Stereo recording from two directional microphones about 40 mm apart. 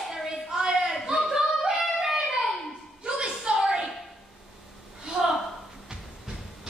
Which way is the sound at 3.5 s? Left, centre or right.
Centre.